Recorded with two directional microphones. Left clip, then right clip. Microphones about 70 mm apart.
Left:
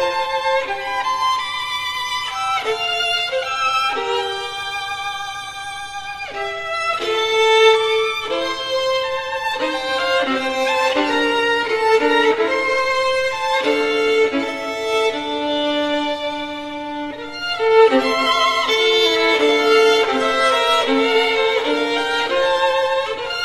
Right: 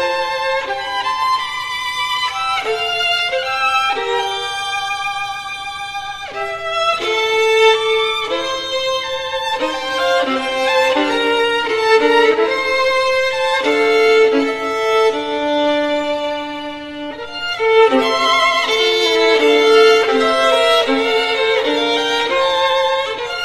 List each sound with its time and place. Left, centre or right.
3.1 s violin: left
7.1 s music: left
9.6 s violin: left
14.9 s music: left
17.6 s music: left
18.3 s violin: left
19.7 s violin: left
20.0 s music: left
20.4 s violin: left
21.7 s music: left